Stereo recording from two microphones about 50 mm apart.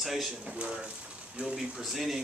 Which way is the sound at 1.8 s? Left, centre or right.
Centre.